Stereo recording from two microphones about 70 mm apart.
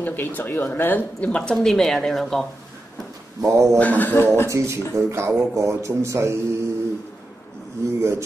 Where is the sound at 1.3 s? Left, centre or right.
Centre.